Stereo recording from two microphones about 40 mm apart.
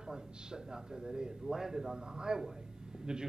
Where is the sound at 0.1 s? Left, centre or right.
Centre.